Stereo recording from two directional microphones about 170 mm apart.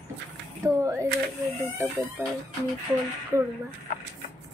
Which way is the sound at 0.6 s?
20° right (ahead or behind).